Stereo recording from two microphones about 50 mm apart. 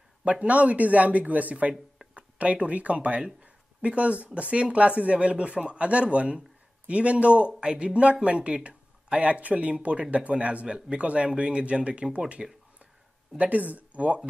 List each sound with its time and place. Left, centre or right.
0.2 s speech: right
13.4 s speech: right